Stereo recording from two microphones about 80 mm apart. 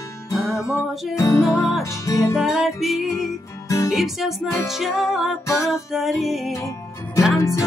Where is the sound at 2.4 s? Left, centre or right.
Centre.